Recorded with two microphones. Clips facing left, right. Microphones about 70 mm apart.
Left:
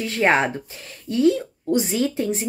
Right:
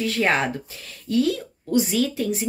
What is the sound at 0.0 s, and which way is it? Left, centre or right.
A woman's voice, left.